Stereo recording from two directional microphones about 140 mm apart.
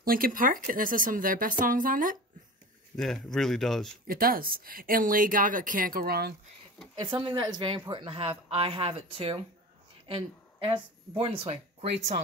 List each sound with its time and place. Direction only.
0.0 s speech: 90° right
3.0 s speech: 5° left (ahead or behind)
4.1 s speech: 90° right
7.0 s speech: 35° right (ahead or behind)